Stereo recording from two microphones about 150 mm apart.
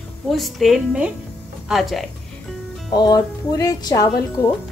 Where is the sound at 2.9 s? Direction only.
25° left (ahead or behind).